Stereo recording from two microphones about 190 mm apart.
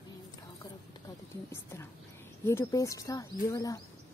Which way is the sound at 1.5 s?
15° left (ahead or behind).